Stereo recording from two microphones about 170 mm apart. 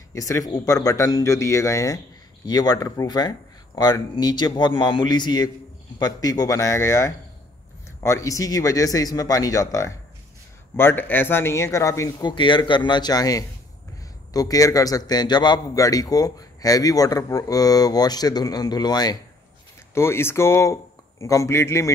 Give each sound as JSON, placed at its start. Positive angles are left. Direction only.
{"t": 0.1, "sound": "a man's voice", "side_deg": 20}